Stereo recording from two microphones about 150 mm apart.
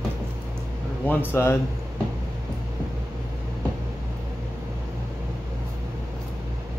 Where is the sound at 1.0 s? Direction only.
15° left (ahead or behind).